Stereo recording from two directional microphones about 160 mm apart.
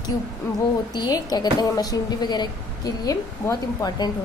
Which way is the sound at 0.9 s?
25° left (ahead or behind).